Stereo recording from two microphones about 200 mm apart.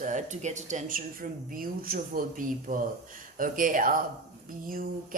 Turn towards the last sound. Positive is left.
turn(degrees=-45)  # may be behind; listen again after turning